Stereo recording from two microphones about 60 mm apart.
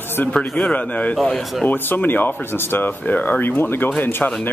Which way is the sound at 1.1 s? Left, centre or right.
Centre.